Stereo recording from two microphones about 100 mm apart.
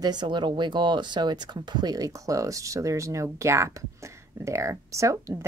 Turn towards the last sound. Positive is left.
turn(degrees=-30)  # may be behind; listen again after turning